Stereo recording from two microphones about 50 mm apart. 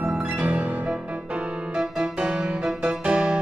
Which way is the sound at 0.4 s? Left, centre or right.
Right.